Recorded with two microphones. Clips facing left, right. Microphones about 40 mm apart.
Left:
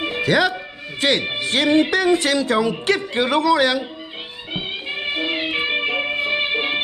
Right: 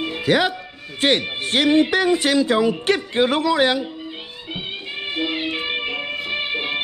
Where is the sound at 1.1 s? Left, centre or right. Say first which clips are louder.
Even; right.